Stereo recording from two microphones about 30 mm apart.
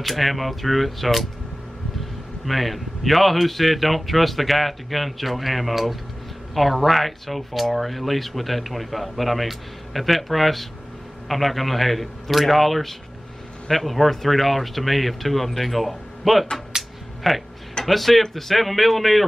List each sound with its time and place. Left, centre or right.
0.0 s speech: centre
2.4 s speech: centre
16.7 s a sound: centre
17.3 s speech: centre